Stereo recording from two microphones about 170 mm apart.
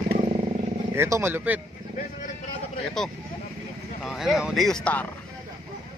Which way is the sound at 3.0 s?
Centre (ahead or behind).